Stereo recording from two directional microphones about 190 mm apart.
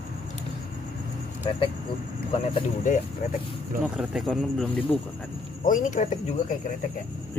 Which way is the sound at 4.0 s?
Centre (ahead or behind).